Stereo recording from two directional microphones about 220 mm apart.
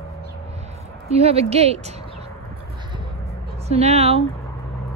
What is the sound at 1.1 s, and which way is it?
Speech, 30° right (ahead or behind).